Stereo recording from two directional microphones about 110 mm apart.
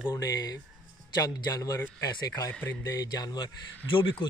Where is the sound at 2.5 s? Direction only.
15° left (ahead or behind).